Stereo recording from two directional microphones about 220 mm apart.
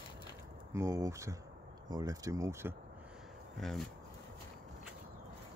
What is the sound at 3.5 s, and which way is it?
Speech, centre (ahead or behind).